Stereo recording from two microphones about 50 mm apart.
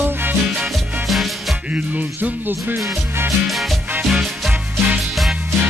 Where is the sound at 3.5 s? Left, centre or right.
Centre.